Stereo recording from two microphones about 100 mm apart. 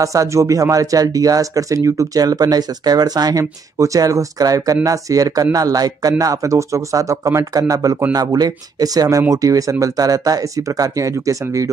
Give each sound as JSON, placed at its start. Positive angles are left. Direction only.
{"t": 0.0, "sound": "speech", "side_deg": -35}